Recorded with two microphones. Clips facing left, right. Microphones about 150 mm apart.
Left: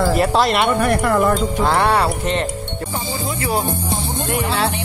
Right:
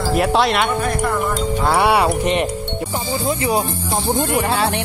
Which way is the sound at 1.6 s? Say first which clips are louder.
Right 3 dB; 5° right (ahead or behind).